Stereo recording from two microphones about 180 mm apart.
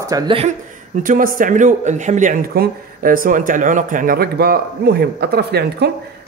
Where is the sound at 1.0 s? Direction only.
50° right (ahead or behind).